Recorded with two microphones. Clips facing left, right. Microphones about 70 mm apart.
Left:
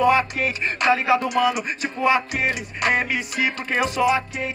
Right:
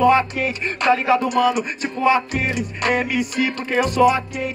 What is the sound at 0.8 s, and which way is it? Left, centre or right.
Music, centre.